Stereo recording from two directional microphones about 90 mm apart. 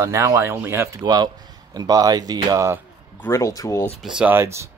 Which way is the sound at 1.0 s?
50° right (ahead or behind).